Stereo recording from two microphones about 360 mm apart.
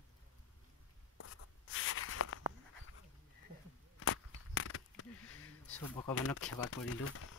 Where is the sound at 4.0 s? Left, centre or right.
Left.